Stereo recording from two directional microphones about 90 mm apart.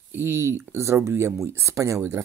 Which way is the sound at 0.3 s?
30° right (ahead or behind).